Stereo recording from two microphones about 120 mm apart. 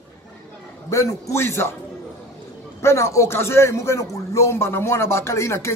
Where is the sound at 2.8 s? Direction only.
25° left (ahead or behind).